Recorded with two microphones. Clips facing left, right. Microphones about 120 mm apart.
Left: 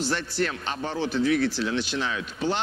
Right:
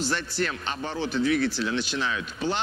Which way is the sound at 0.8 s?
25° left (ahead or behind).